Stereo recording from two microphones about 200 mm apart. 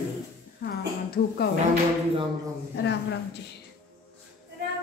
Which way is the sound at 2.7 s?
60° left (ahead or behind).